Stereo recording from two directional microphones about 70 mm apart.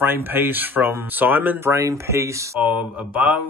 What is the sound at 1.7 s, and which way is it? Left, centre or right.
Speech, right.